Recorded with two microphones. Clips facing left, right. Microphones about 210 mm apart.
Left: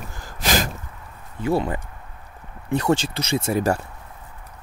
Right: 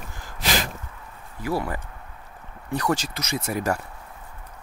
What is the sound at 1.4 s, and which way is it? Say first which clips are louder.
Speech: left 5 dB; 25° left (ahead or behind).